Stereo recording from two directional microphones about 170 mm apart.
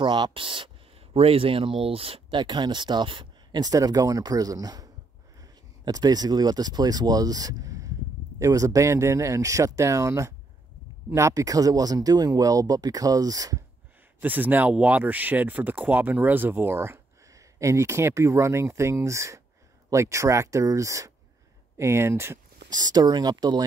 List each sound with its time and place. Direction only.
0.0 s speech: 25° right (ahead or behind)
14.2 s speech: 10° right (ahead or behind)